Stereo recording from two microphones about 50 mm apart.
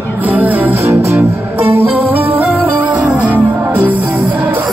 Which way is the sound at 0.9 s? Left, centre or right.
Right.